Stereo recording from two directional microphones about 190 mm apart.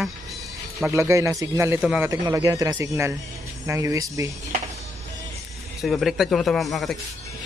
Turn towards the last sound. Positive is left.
turn(degrees=0)  # may be behind; listen again after turning